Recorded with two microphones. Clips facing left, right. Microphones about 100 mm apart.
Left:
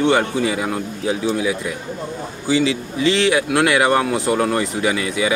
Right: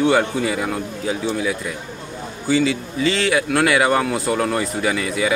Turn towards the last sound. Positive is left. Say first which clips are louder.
# left 1 dB
turn(degrees=0)  # may be behind; listen again after turning